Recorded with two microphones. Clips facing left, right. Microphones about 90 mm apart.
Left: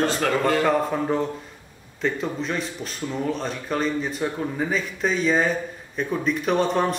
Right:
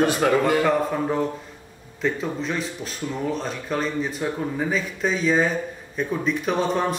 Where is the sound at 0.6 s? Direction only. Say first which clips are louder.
Even; centre (ahead or behind).